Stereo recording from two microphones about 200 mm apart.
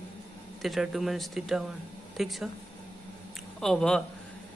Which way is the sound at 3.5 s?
5° left (ahead or behind).